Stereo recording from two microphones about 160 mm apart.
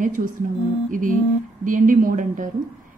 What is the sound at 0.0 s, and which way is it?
Speech, 55° right (ahead or behind).